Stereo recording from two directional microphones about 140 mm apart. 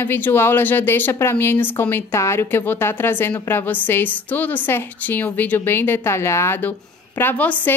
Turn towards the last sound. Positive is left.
turn(degrees=10)  # may be behind; listen again after turning